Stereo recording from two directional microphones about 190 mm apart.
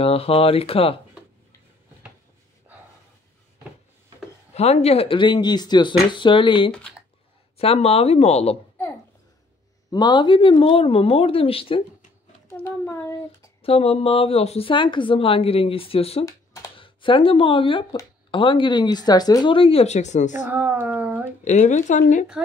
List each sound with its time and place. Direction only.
0.0 s speech: 30° left (ahead or behind)
4.6 s speech: 35° left (ahead or behind)
9.8 s speech: 25° left (ahead or behind)
12.4 s a sound: 15° left (ahead or behind)
13.6 s speech: 30° left (ahead or behind)
20.4 s speech: 10° right (ahead or behind)
21.5 s speech: 40° left (ahead or behind)